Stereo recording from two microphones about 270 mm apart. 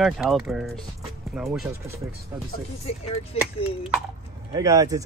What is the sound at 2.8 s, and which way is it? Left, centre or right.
Speech, left.